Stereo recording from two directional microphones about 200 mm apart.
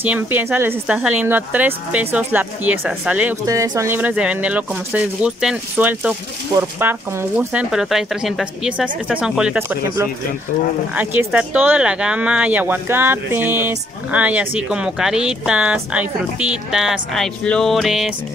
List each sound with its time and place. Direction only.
0.0 s speech: 10° right (ahead or behind)